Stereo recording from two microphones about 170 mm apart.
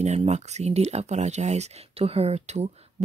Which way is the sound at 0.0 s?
40° right (ahead or behind).